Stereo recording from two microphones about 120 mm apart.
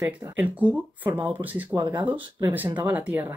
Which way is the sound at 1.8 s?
35° right (ahead or behind).